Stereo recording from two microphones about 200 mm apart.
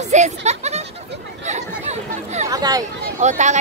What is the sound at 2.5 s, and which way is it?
Speech, 20° right (ahead or behind).